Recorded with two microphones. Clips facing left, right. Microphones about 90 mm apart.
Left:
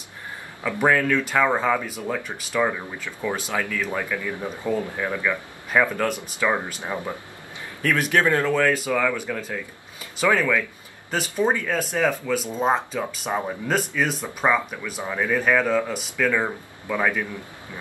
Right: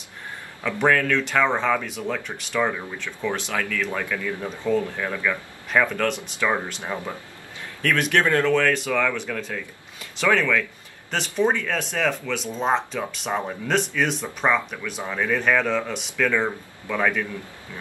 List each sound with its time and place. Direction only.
0.7 s speech: 10° left (ahead or behind)
6.8 s speech: 15° left (ahead or behind)
7.8 s speech: 5° left (ahead or behind)